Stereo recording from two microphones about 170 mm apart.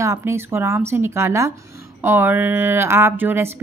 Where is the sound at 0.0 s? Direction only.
15° right (ahead or behind).